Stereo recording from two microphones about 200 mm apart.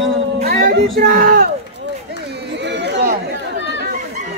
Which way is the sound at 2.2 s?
60° right (ahead or behind).